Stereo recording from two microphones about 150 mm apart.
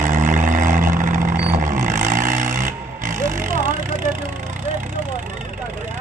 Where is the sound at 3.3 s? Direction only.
60° right (ahead or behind).